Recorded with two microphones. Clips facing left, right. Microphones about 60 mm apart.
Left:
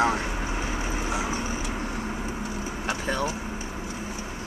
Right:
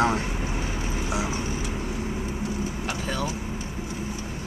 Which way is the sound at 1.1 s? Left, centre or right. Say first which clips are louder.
Right 2 dB; centre.